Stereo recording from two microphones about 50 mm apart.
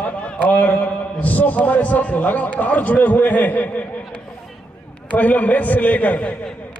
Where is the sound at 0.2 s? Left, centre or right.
Left.